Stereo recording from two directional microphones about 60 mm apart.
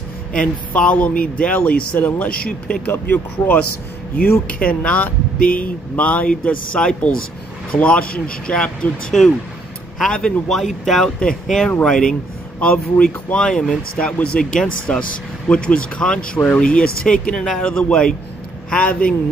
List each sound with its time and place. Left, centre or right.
0.3 s a man's voice: centre
10.5 s speech: centre
12.5 s a man's voice: left